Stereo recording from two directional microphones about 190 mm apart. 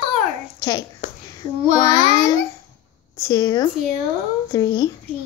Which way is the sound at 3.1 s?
15° left (ahead or behind).